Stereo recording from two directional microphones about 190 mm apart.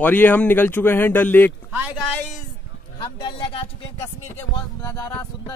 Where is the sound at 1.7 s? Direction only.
10° right (ahead or behind).